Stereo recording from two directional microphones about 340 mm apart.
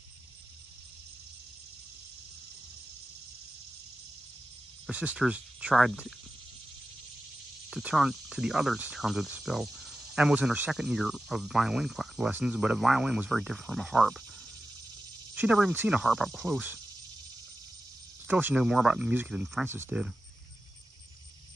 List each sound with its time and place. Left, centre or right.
4.8 s speech: centre
7.7 s speech: centre
15.3 s speech: centre
18.2 s speech: centre